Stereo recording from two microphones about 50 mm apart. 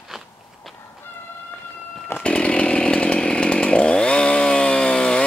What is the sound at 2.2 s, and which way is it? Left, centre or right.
Chainsaw, left.